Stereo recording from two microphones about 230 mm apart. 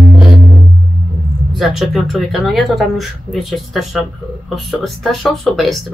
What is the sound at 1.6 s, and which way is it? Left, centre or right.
Speech, centre.